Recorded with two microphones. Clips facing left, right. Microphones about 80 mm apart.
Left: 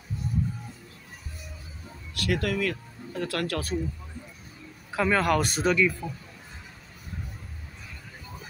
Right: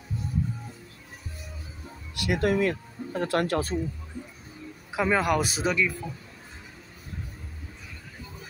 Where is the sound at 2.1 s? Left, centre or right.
Centre.